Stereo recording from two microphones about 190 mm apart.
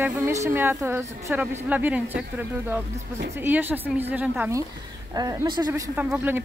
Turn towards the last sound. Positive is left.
turn(degrees=-10)  # may be behind; listen again after turning